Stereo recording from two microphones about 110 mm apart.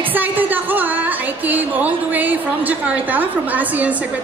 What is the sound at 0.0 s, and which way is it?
A woman's voice, 15° right (ahead or behind).